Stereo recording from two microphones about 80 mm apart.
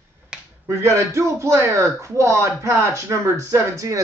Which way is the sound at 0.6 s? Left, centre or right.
Right.